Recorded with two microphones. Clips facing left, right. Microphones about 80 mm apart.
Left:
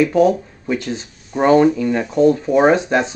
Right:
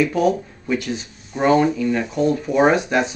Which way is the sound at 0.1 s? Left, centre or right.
Left.